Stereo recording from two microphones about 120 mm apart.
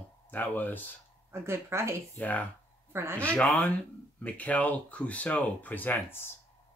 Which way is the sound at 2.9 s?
20° right (ahead or behind).